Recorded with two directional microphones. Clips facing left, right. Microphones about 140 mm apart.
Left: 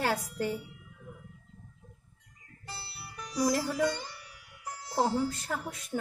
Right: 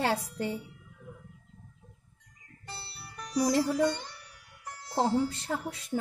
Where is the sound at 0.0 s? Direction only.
25° right (ahead or behind).